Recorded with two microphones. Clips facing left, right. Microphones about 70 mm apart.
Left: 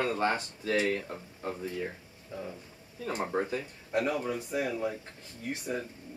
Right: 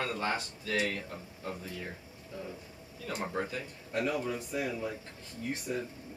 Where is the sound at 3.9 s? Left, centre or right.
Left.